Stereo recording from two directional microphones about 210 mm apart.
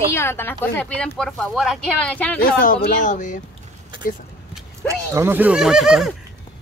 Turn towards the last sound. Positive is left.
turn(degrees=0)  # may be behind; listen again after turning